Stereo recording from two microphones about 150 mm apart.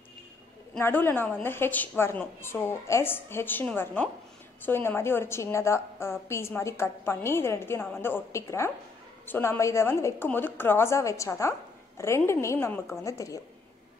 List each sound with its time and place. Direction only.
0.7 s a woman's voice: 15° left (ahead or behind)